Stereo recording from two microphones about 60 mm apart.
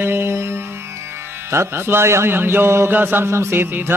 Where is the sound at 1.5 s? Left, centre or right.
Right.